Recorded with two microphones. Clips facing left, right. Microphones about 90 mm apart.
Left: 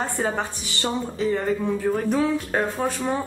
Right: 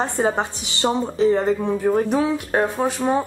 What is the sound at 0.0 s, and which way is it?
Speech, 20° right (ahead or behind).